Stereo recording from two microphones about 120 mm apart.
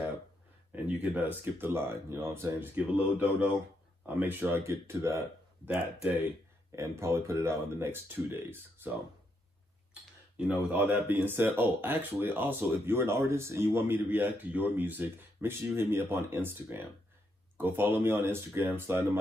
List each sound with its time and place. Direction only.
0.8 s speech: 10° right (ahead or behind)
10.4 s speech: 10° right (ahead or behind)